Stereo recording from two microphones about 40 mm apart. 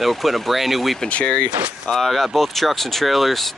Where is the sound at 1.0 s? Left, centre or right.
Left.